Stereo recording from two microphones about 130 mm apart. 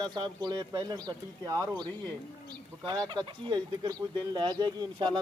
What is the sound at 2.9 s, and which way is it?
Speech, 35° right (ahead or behind).